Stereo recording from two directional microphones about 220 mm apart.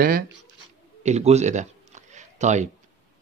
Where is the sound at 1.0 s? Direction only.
30° right (ahead or behind).